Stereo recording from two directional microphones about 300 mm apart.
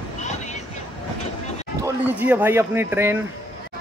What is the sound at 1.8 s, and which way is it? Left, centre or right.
A man's voice, centre.